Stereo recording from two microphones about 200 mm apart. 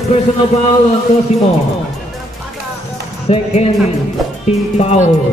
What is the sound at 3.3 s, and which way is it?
Speech, 30° left (ahead or behind).